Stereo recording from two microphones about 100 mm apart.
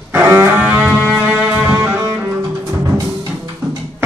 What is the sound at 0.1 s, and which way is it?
Music, 25° right (ahead or behind).